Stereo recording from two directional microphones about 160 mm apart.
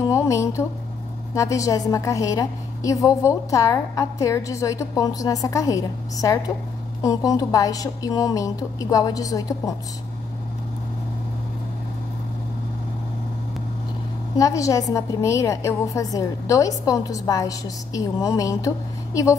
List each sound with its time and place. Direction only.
0.0 s music: 20° left (ahead or behind)
1.3 s a woman's voice: 20° left (ahead or behind)
14.3 s a woman's voice: 20° left (ahead or behind)